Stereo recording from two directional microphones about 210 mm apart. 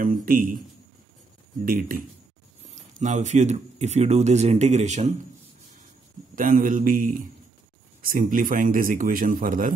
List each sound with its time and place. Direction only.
0.0 s a man's voice: 40° right (ahead or behind)
1.6 s a man's voice: 40° right (ahead or behind)
6.3 s a man's voice: 40° right (ahead or behind)